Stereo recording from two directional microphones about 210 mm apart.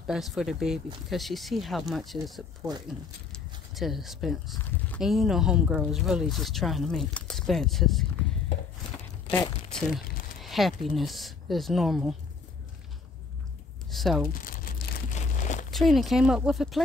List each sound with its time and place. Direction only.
0.0 s speech: centre (ahead or behind)
4.6 s speech: 10° left (ahead or behind)
5.0 s speech: centre (ahead or behind)
9.3 s speech: 5° left (ahead or behind)
13.8 s speech: centre (ahead or behind)
14.4 s crumpling: 45° left (ahead or behind)
15.7 s speech: centre (ahead or behind)